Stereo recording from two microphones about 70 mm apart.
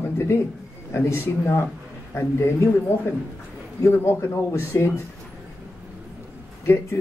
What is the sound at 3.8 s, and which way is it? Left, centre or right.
Speech, left.